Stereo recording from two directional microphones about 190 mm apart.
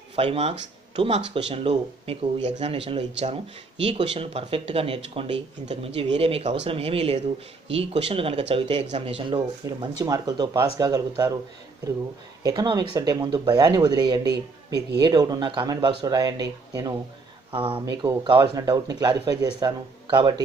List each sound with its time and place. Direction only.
0.1 s speech: 30° right (ahead or behind)
12.4 s speech: 20° right (ahead or behind)